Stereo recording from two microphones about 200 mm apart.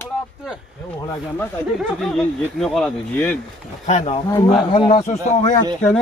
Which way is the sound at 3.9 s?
35° left (ahead or behind).